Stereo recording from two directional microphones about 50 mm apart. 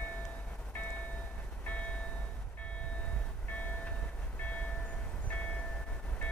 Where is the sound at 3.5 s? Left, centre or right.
Left.